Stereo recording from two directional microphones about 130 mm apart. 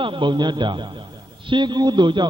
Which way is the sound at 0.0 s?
40° right (ahead or behind).